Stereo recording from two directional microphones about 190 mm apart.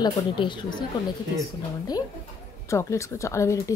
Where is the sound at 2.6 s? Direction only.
15° left (ahead or behind).